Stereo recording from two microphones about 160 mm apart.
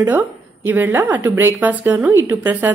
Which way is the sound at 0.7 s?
15° right (ahead or behind).